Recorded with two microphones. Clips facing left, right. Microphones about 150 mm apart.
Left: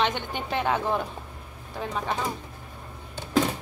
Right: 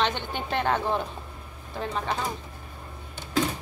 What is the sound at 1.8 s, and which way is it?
Chopping, 10° left (ahead or behind).